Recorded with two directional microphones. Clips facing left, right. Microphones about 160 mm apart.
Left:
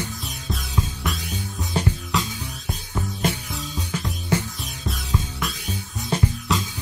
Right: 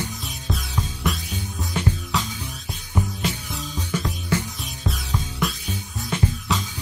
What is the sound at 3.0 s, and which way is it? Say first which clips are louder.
Music: right 5 dB; 15° right (ahead or behind).